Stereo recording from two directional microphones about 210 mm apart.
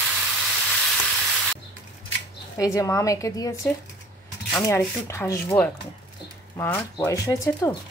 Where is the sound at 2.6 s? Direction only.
15° left (ahead or behind).